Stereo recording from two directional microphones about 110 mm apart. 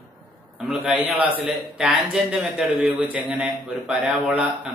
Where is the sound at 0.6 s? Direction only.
5° right (ahead or behind).